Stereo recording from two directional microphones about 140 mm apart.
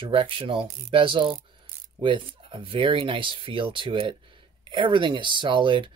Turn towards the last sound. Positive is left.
turn(degrees=-35)  # may be behind; listen again after turning